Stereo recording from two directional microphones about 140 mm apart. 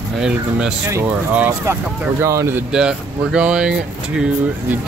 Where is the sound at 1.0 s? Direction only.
10° right (ahead or behind).